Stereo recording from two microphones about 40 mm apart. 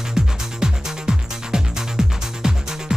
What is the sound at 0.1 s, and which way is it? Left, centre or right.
Music, centre.